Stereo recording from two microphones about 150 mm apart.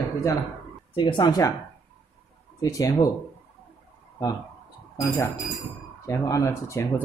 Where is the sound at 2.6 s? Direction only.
25° left (ahead or behind).